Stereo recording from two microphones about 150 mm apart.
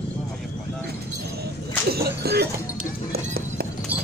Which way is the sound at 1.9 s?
90° right.